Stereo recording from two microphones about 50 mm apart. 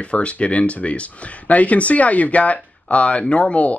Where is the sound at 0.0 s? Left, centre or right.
Left.